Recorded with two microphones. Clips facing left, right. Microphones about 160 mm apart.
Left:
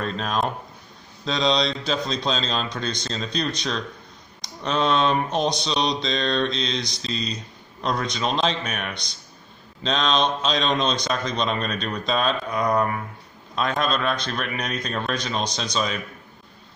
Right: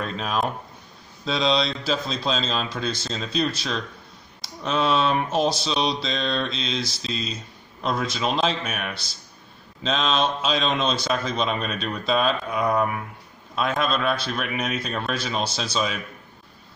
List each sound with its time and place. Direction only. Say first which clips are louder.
0.0 s speech: left 1 dB; 5° right (ahead or behind)